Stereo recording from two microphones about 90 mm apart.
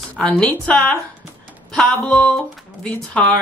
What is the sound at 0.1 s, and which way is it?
Speech, 15° left (ahead or behind).